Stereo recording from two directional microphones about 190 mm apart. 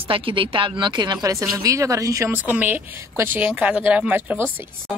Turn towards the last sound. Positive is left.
turn(degrees=-10)  # may be behind; listen again after turning